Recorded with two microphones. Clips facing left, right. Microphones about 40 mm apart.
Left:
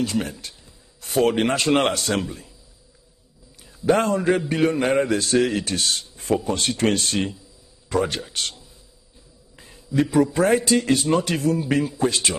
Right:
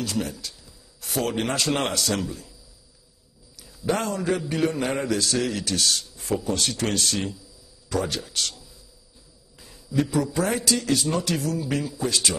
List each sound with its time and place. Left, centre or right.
0.0 s a man's voice: left
3.6 s a man's voice: left
9.6 s a sound: left
10.0 s a man's voice: left